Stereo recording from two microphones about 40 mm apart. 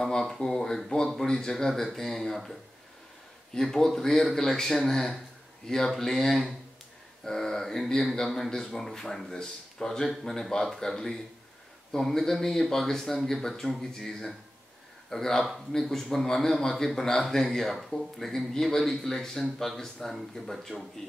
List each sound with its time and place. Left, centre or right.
0.2 s speech: centre
3.5 s speech: centre